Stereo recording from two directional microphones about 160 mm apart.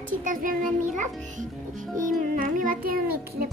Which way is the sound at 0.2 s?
55° right (ahead or behind).